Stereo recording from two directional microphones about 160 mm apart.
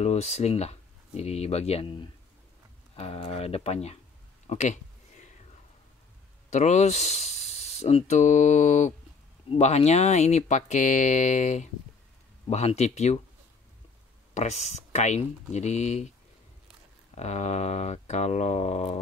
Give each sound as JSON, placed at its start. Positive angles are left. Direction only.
{"t": 0.0, "sound": "speech", "side_deg": 40}
{"t": 4.5, "sound": "a sound", "side_deg": 50}
{"t": 6.5, "sound": "speech", "side_deg": 45}
{"t": 14.3, "sound": "speech", "side_deg": 45}
{"t": 17.2, "sound": "speech", "side_deg": 45}